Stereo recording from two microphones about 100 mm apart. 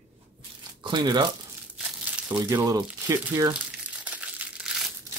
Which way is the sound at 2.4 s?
25° right (ahead or behind).